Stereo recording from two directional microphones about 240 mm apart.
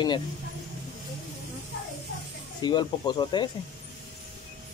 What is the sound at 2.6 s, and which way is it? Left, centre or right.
Speech, centre.